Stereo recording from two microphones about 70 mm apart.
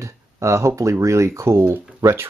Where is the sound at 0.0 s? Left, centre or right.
Right.